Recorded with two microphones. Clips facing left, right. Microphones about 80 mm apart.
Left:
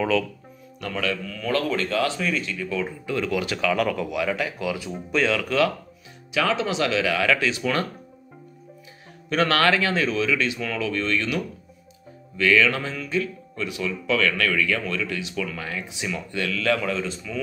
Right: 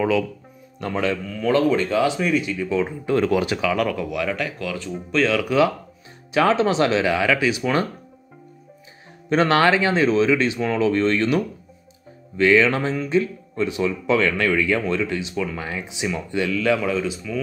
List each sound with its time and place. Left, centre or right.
0.7 s a man's voice: right
3.1 s speech: right
3.4 s a man's voice: centre
3.7 s speech: centre
6.3 s speech: right
7.2 s a man's voice: centre
9.3 s speech: right; by 17.4 s centre